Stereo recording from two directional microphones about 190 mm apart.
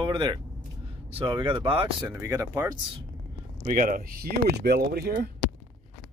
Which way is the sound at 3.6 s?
45° right (ahead or behind).